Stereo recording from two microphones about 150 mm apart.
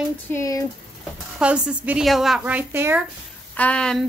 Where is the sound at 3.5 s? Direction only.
10° left (ahead or behind).